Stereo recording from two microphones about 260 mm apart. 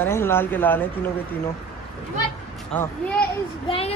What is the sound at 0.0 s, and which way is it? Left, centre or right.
Speech, centre.